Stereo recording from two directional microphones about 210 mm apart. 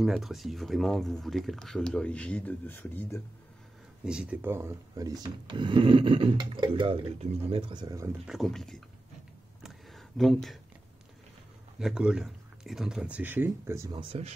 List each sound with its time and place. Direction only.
0.0 s speech: centre (ahead or behind)
4.0 s speech: 5° right (ahead or behind)
8.3 s speech: centre (ahead or behind)
9.6 s a sound: centre (ahead or behind)
11.8 s speech: 5° right (ahead or behind)